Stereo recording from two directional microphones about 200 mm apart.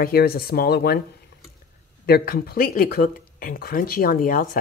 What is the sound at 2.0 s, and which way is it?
Speech, 50° left (ahead or behind).